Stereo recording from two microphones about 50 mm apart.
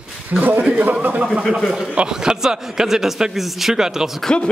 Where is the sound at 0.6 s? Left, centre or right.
Right.